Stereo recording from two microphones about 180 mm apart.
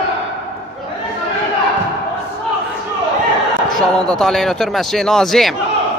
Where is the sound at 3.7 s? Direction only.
5° left (ahead or behind).